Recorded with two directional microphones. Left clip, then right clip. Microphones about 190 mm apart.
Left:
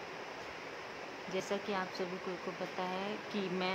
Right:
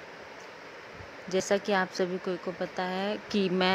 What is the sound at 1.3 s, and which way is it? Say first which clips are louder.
Speech: right 11 dB; 30° right (ahead or behind).